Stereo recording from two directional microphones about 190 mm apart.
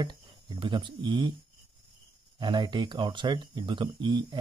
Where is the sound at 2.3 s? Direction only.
25° right (ahead or behind).